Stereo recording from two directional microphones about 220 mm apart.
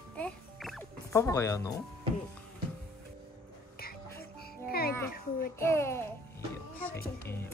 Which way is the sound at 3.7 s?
45° left (ahead or behind).